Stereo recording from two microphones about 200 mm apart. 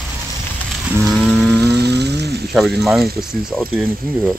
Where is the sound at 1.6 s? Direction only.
55° right (ahead or behind).